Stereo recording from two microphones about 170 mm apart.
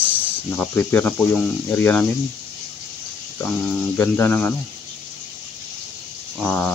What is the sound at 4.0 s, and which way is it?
Speech, 10° left (ahead or behind).